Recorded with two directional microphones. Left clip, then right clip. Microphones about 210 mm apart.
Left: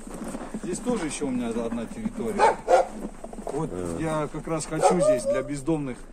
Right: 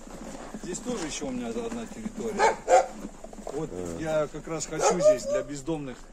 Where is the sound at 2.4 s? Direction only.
10° left (ahead or behind).